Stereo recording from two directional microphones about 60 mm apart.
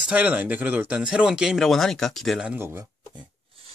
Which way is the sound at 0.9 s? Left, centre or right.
Centre.